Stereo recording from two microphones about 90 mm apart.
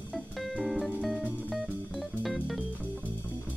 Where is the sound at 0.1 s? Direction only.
Centre (ahead or behind).